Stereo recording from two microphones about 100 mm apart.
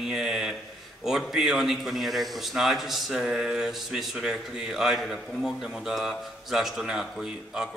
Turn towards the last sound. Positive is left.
turn(degrees=-5)  # may be behind; listen again after turning